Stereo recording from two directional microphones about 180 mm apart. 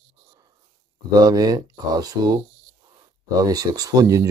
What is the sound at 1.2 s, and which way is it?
Speech, 20° right (ahead or behind).